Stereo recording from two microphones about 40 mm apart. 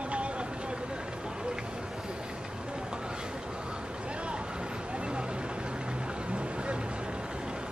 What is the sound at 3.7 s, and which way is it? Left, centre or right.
Vehicle, right.